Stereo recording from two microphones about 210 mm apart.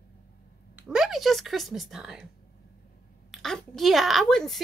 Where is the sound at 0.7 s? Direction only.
5° right (ahead or behind).